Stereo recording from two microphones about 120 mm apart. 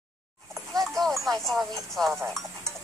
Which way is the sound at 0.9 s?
Centre (ahead or behind).